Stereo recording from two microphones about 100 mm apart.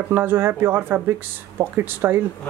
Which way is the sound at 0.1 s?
20° right (ahead or behind).